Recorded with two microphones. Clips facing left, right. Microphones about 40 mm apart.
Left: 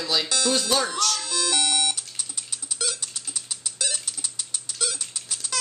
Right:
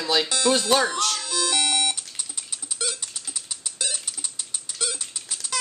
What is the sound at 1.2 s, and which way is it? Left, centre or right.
Music, centre.